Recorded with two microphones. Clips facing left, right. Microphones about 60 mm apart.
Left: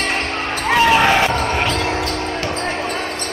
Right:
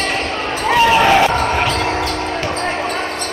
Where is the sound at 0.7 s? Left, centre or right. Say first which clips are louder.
Right 2 dB; centre.